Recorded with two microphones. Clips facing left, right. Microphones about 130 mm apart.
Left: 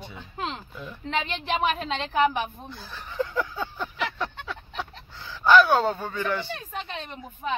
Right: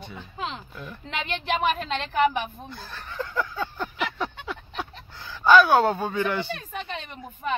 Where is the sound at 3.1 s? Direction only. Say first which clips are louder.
Left 2 dB; 15° left (ahead or behind).